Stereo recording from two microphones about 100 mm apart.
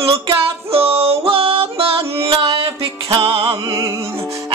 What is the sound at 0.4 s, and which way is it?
Music, 70° right (ahead or behind).